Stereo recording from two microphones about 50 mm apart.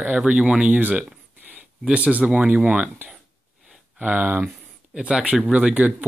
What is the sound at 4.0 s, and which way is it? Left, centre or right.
Speech, right.